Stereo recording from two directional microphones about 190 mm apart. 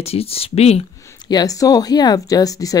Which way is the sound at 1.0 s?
20° left (ahead or behind).